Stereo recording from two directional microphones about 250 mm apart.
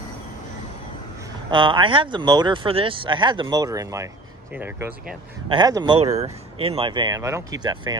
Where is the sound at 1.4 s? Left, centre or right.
Centre.